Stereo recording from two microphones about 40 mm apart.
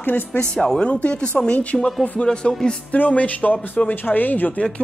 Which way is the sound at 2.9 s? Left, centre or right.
Left.